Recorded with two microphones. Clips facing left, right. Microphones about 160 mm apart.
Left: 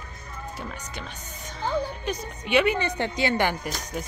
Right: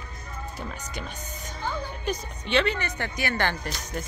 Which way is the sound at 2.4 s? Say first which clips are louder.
Left 3 dB; 10° left (ahead or behind).